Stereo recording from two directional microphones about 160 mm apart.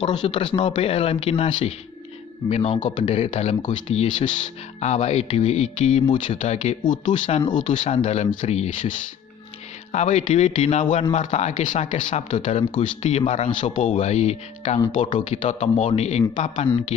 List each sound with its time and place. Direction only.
0.0 s speech: 25° left (ahead or behind); by 6.0 s 45° left (ahead or behind)
6.0 s speech: 30° left (ahead or behind)
6.8 s speech: 30° left (ahead or behind); by 8.9 s 50° left (ahead or behind)
9.9 s speech: 45° left (ahead or behind)
15.0 s speech: 30° left (ahead or behind)
15.2 s speech: 45° left (ahead or behind)